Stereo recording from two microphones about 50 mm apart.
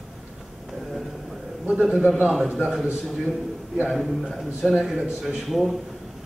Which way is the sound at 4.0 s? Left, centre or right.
Centre.